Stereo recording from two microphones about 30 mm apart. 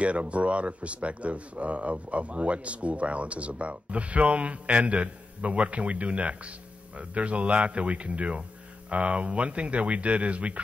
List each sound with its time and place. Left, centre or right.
0.0 s speech: right